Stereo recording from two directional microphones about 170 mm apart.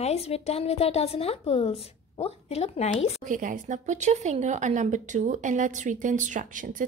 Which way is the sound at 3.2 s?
50° right (ahead or behind).